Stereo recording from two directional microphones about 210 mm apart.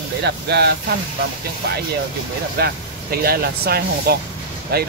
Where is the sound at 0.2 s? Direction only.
50° right (ahead or behind).